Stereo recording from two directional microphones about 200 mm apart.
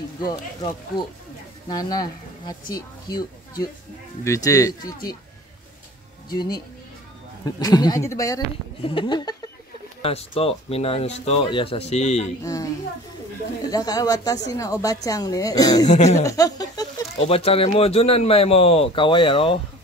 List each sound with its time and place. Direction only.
0.3 s speech: 20° left (ahead or behind)
6.3 s speech: 20° left (ahead or behind)
12.4 s speech: 15° left (ahead or behind)
15.9 s speech: 35° left (ahead or behind)
16.2 s speech: 15° left (ahead or behind)
17.2 s speech: 30° left (ahead or behind)